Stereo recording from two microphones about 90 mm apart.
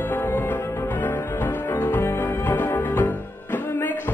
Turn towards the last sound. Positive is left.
turn(degrees=25)  # may be behind; listen again after turning